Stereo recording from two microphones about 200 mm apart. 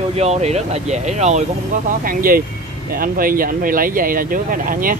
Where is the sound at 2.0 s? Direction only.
45° right (ahead or behind).